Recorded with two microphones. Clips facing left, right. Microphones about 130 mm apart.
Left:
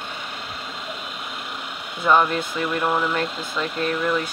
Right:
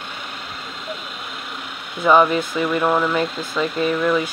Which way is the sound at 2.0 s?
10° right (ahead or behind).